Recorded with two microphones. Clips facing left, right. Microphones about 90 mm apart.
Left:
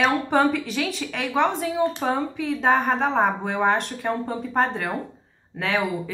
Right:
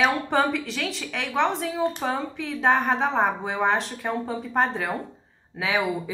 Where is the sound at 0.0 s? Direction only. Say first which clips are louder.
Left 2 dB; centre (ahead or behind).